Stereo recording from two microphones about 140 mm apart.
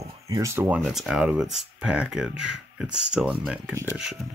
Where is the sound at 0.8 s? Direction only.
Centre (ahead or behind).